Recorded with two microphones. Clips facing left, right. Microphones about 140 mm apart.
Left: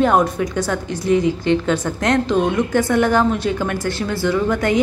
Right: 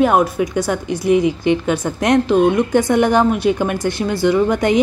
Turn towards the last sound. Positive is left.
turn(degrees=-20)  # may be behind; listen again after turning